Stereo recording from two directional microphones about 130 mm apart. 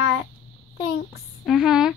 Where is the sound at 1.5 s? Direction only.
Centre (ahead or behind).